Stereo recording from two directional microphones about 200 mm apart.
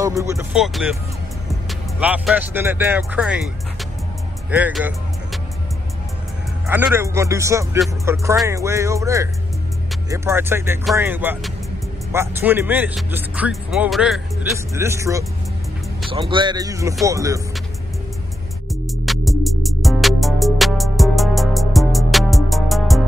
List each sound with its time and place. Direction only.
0.0 s speech: 15° right (ahead or behind)
0.6 s speech: 5° right (ahead or behind)
4.5 s music: 10° right (ahead or behind)
6.7 s speech: 10° right (ahead or behind)
14.7 s speech: 15° right (ahead or behind)
16.1 s speech: 25° right (ahead or behind)
19.0 s music: centre (ahead or behind)